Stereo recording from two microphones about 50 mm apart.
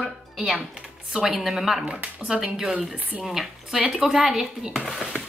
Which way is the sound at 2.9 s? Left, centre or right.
Right.